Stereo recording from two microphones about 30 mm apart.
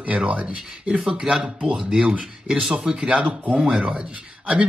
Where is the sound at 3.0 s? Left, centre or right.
Right.